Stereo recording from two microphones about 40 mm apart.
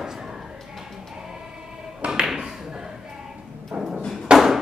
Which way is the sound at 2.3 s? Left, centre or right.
Centre.